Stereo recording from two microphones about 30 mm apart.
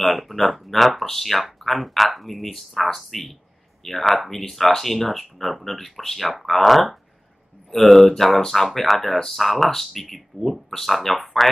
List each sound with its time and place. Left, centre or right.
0.0 s speech: centre